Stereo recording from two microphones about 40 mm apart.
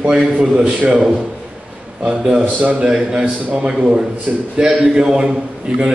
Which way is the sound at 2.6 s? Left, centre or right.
Right.